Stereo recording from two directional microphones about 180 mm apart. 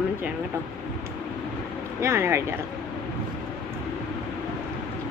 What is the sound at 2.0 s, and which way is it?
Speech, 15° right (ahead or behind).